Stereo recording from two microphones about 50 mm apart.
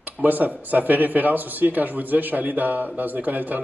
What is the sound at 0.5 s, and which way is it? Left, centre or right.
Speech, right.